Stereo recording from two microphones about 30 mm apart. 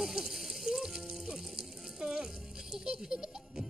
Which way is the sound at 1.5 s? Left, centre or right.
Right.